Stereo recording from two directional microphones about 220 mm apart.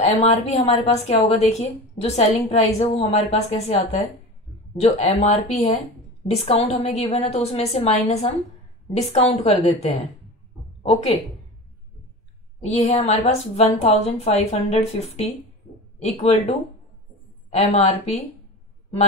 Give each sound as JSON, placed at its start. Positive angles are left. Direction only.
{"t": 0.0, "sound": "a woman's voice", "side_deg": 30}
{"t": 12.6, "sound": "a woman's voice", "side_deg": 30}